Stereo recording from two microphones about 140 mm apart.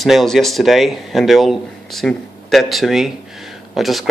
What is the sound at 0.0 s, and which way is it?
Speech, centre (ahead or behind).